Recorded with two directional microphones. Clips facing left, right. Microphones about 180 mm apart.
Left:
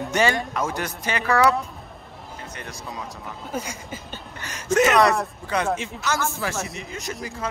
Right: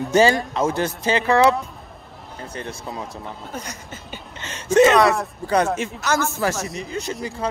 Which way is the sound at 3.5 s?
10° left (ahead or behind).